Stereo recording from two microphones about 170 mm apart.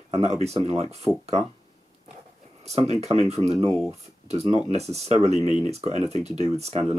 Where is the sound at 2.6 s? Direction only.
40° right (ahead or behind).